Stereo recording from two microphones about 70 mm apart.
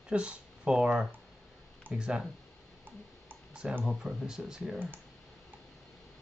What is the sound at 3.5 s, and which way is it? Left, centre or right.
Speech, centre.